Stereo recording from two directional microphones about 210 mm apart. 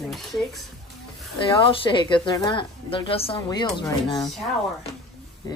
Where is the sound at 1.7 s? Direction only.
25° left (ahead or behind).